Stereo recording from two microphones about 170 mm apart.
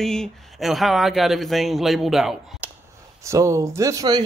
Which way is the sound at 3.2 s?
20° right (ahead or behind).